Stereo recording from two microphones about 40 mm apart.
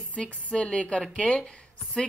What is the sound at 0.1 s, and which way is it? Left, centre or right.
Speech, left.